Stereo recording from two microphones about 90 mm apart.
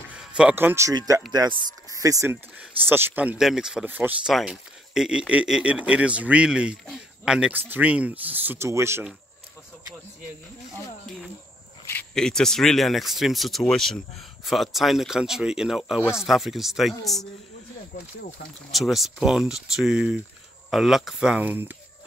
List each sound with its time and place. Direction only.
0.1 s a sound: 10° right (ahead or behind)
0.6 s speech: 25° right (ahead or behind)
0.9 s speech: 40° right (ahead or behind)
2.9 s speech: 25° right (ahead or behind)
3.3 s speech: 5° right (ahead or behind)
3.8 s speech: 20° right (ahead or behind)
4.3 s speech: 5° right (ahead or behind)
7.5 s speech: 20° right (ahead or behind)
12.1 s speech: 5° left (ahead or behind)
18.7 s speech: centre (ahead or behind)
21.5 s speech: 20° right (ahead or behind)